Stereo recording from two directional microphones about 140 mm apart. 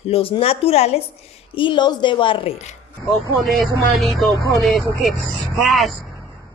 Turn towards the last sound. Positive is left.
turn(degrees=0)  # may be behind; listen again after turning